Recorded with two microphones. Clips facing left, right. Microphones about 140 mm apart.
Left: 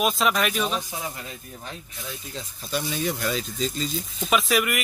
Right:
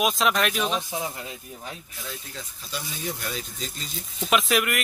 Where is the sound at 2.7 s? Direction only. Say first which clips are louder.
Left 7 dB; 55° left (ahead or behind).